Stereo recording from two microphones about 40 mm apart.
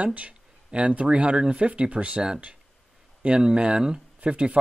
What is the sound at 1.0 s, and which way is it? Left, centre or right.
Speech, right.